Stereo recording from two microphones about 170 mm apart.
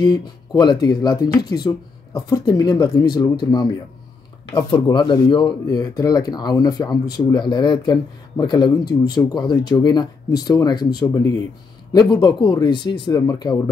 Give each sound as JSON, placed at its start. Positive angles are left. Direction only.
{"t": 0.0, "sound": "speech", "side_deg": 25}